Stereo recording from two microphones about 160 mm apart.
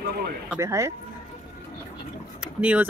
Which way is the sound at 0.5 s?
20° right (ahead or behind).